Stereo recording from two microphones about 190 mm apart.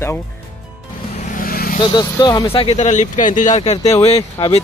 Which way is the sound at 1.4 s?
50° left (ahead or behind).